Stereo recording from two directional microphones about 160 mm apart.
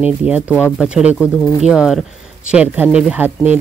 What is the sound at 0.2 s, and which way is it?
Speech, 5° right (ahead or behind).